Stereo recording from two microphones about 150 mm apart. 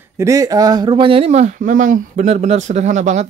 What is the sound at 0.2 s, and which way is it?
Speech, 20° right (ahead or behind).